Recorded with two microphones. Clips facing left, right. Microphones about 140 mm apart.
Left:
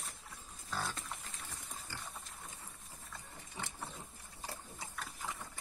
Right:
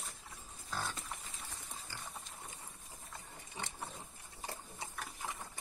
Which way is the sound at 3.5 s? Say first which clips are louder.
Even; 20° right (ahead or behind).